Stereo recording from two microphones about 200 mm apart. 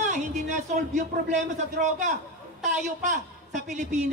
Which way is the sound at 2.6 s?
40° right (ahead or behind).